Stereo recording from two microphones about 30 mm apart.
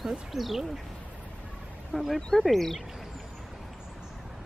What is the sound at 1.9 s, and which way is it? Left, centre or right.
Speech, centre.